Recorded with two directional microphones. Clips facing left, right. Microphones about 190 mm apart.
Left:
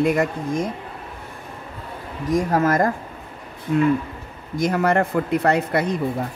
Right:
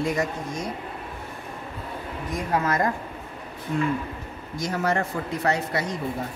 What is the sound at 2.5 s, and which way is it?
Speech, 45° left (ahead or behind).